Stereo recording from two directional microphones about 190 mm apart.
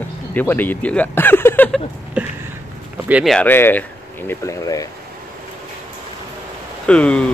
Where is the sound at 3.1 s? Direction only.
Centre (ahead or behind); by 4.9 s 15° left (ahead or behind).